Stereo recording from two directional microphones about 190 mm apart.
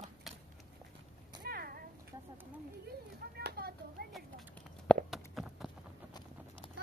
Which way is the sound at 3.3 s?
55° right (ahead or behind).